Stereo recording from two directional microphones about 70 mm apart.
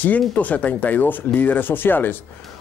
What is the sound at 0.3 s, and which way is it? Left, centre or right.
Speech, left.